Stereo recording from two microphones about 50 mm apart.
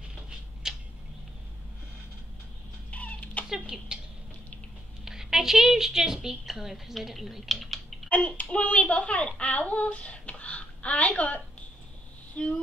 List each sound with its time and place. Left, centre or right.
0.7 s a sound: centre
2.9 s chicken: left
3.4 s speech: centre
5.0 s a woman's voice: centre
8.1 s a child's voice: left
12.4 s a sound: left